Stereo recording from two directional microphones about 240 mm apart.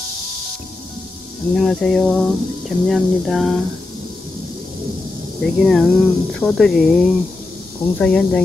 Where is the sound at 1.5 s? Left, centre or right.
Centre.